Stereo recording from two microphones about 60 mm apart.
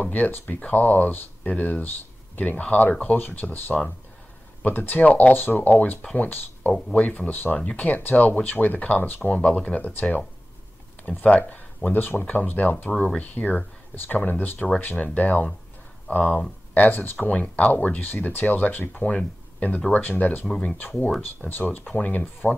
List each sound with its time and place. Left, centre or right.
0.0 s speech: left
9.3 s speech: centre